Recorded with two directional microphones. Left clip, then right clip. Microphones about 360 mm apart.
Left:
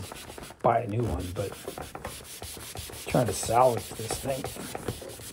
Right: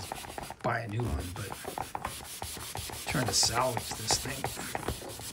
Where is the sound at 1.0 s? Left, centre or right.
Centre.